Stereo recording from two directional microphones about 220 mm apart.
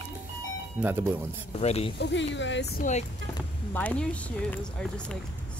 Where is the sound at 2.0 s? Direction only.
55° left (ahead or behind).